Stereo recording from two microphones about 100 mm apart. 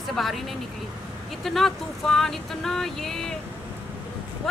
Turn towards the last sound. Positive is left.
turn(degrees=5)  # may be behind; listen again after turning